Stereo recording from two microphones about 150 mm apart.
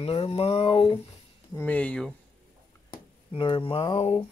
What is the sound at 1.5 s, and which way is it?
Speech, 10° left (ahead or behind).